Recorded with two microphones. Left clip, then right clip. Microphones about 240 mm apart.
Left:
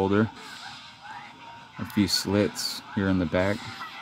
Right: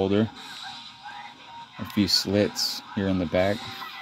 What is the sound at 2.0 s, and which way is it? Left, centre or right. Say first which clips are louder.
Speech: right 3 dB; left.